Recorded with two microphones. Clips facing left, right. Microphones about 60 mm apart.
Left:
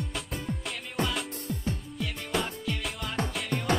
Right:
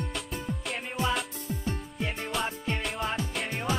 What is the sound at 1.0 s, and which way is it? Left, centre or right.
Music, left.